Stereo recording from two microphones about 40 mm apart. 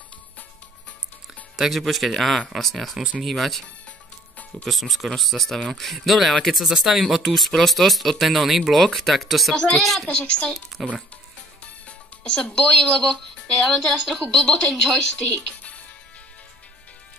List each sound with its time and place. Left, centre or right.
1.6 s speech: centre
4.6 s speech: centre
9.6 s speech: centre
10.0 s speech: left
10.7 s music: centre
12.2 s speech: left
13.7 s speech: centre
14.3 s speech: left